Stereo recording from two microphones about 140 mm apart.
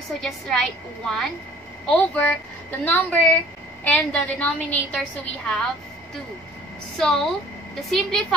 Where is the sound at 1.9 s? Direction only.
10° left (ahead or behind).